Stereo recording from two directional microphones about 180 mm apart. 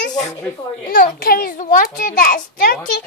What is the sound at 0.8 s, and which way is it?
A child's voice, 55° left (ahead or behind).